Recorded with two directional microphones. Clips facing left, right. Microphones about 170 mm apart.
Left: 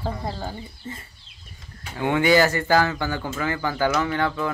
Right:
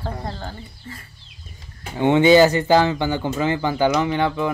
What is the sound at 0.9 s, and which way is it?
Speech, 25° left (ahead or behind).